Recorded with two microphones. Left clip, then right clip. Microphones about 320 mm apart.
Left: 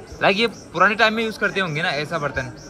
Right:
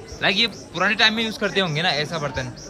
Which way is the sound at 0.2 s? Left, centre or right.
Centre.